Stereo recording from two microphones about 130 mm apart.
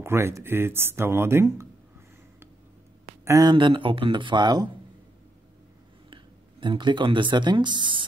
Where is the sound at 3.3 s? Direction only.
30° right (ahead or behind).